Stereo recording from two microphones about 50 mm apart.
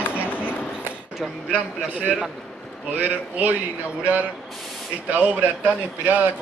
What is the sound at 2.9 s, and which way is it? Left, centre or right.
Speech, right.